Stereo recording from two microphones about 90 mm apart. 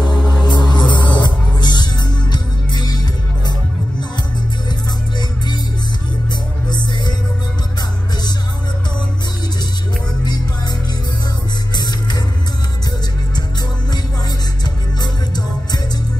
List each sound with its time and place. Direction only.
0.0 s music: 55° left (ahead or behind)
11.7 s music: 50° left (ahead or behind)
14.6 s music: 50° left (ahead or behind)